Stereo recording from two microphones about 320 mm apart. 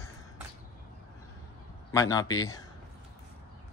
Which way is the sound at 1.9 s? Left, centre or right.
Centre.